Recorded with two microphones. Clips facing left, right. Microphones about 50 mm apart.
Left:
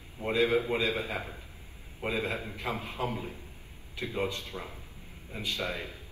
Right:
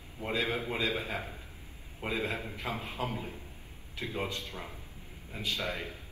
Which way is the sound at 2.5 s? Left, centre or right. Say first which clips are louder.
Left 2 dB; left.